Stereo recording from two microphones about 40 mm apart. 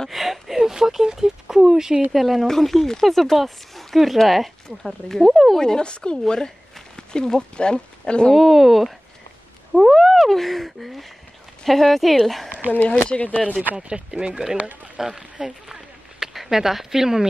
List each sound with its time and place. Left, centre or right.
0.1 s a sound: centre
2.0 s speech: centre
2.4 s speech: centre
5.6 s speech: centre
8.4 s speech: centre
13.1 s speech: left
13.8 s speech: right
15.4 s a sound: centre